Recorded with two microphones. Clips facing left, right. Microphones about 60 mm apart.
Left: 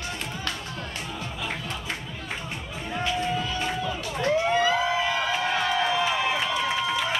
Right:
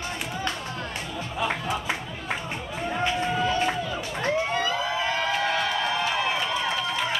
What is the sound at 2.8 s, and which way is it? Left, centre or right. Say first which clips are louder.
Music: right 1 dB; right.